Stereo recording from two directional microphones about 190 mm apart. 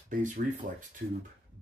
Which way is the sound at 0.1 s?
40° right (ahead or behind).